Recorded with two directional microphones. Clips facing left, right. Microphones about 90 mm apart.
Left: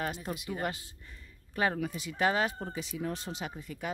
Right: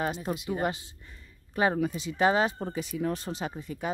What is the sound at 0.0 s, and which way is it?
Speech, 25° right (ahead or behind).